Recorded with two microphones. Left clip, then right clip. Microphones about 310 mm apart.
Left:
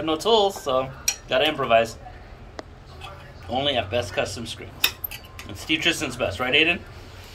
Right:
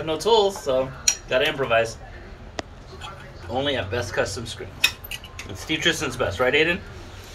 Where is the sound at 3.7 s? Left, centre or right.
Centre.